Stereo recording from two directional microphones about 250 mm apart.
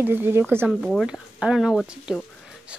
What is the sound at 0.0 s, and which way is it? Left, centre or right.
Speech, centre.